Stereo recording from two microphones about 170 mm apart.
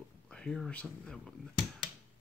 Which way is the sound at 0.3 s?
5° left (ahead or behind).